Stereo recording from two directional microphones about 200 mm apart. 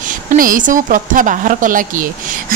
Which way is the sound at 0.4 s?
40° right (ahead or behind).